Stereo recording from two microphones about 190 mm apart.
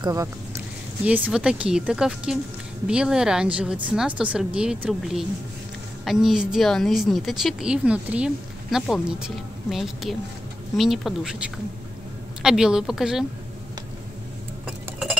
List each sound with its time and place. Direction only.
0.0 s speech: 20° right (ahead or behind)
1.0 s a woman's voice: 10° right (ahead or behind)